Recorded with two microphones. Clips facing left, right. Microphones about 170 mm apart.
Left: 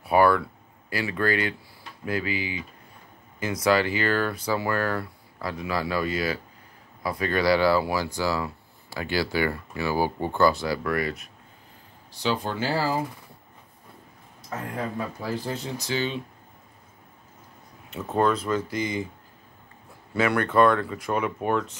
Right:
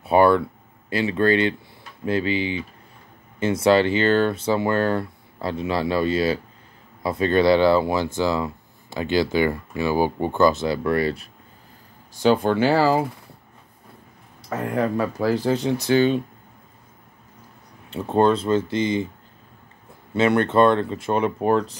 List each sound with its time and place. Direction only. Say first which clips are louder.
0.0 s speech: right 4 dB; 25° right (ahead or behind)
12.1 s speech: right 9 dB; 50° right (ahead or behind); by 13.0 s 75° right (ahead or behind)
14.5 s speech: right 8 dB; 75° right (ahead or behind); by 16.2 s 55° right (ahead or behind)
17.8 s speech: right 5 dB; 30° right (ahead or behind)
20.2 s speech: right 4 dB; 25° right (ahead or behind)